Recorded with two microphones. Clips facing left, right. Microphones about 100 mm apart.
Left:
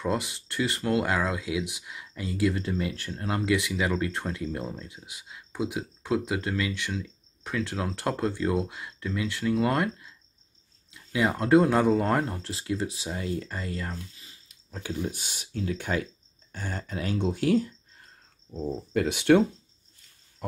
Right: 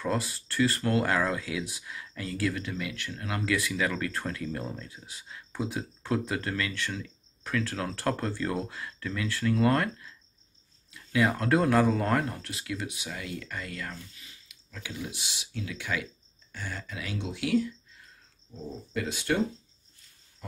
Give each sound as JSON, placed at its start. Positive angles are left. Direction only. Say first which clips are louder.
{"t": 0.0, "sound": "speech", "louder": "left 2 dB", "side_deg": 15}
{"t": 2.6, "sound": "speech", "louder": "left 5 dB", "side_deg": 30}
{"t": 18.9, "sound": "speech", "louder": "left 8 dB", "side_deg": 60}